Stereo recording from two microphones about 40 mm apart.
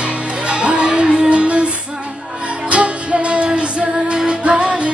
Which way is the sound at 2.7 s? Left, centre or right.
Right.